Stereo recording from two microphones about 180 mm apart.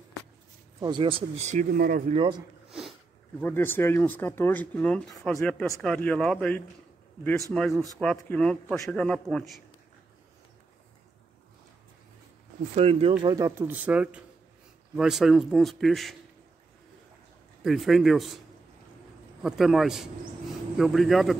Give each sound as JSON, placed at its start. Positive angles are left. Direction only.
{"t": 0.7, "sound": "speech", "side_deg": -25}
{"t": 3.3, "sound": "a man's voice", "side_deg": 10}
{"t": 12.7, "sound": "a man's voice", "side_deg": -35}
{"t": 17.6, "sound": "a man's voice", "side_deg": 0}
{"t": 19.4, "sound": "a man's voice", "side_deg": 0}